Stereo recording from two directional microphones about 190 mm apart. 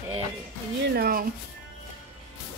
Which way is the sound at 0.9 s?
50° right (ahead or behind).